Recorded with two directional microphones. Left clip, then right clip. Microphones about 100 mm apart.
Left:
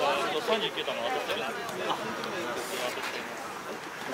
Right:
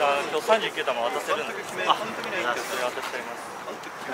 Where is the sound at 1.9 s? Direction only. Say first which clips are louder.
Right 10 dB; 20° right (ahead or behind).